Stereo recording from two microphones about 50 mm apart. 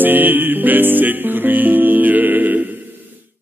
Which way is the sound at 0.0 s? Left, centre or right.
Right.